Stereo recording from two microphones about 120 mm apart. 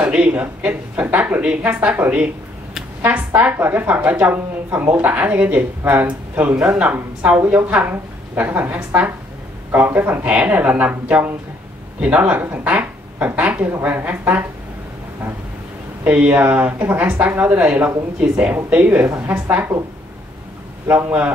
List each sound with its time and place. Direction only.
0.0 s a woman's voice: 10° right (ahead or behind)
16.0 s a woman's voice: 10° right (ahead or behind)
20.8 s a woman's voice: 15° right (ahead or behind)